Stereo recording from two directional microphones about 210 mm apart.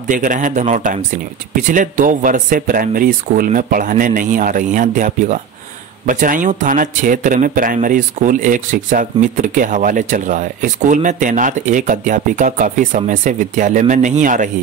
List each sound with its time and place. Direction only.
0.1 s speech: 40° right (ahead or behind)